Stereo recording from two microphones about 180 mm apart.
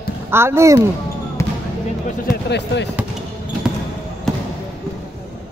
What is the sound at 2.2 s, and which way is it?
Speech, 75° left (ahead or behind).